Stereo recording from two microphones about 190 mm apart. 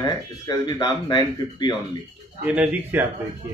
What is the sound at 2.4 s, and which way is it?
Speech, 5° right (ahead or behind).